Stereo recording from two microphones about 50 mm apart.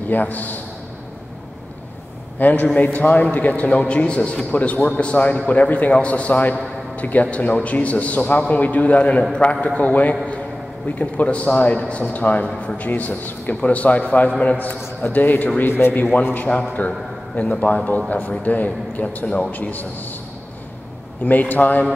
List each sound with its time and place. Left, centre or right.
0.1 s a man's voice: left
2.3 s a man's voice: left
21.2 s a man's voice: left